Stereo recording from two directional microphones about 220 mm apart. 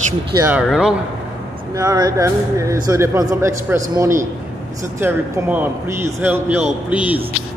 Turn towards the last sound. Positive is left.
turn(degrees=-5)  # may be behind; listen again after turning